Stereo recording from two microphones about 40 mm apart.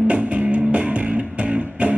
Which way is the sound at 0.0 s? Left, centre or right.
Right.